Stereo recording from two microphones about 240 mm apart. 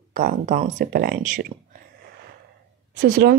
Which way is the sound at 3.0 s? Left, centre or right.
Right.